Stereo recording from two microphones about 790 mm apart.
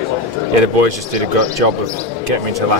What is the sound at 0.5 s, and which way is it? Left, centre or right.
Speech, right.